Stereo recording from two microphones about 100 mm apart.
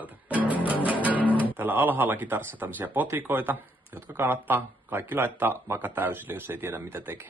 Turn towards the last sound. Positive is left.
turn(degrees=-20)  # may be behind; listen again after turning